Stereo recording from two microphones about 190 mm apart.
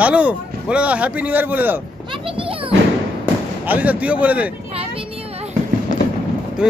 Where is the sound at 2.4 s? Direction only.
30° right (ahead or behind).